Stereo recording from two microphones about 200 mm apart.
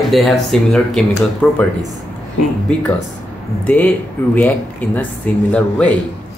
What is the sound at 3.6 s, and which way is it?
Speech, 10° left (ahead or behind).